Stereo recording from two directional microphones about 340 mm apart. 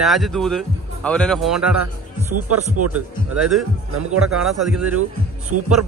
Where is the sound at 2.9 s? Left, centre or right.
Centre.